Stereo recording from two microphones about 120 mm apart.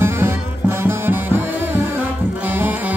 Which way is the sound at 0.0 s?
20° right (ahead or behind).